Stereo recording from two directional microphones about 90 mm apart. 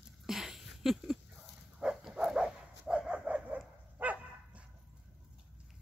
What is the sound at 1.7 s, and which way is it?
Dog, 10° right (ahead or behind).